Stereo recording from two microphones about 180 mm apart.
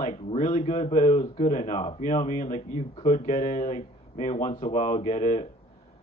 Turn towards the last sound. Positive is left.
turn(degrees=40)  # may be behind; listen again after turning